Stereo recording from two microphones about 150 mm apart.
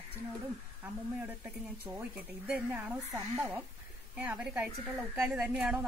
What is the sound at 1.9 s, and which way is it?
Speech, 10° right (ahead or behind).